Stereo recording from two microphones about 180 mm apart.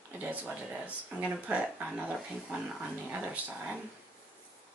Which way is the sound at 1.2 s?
5° right (ahead or behind).